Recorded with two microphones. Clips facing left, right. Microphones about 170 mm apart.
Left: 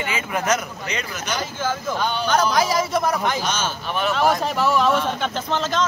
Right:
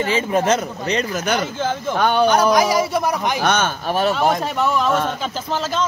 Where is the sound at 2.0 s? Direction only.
60° right (ahead or behind).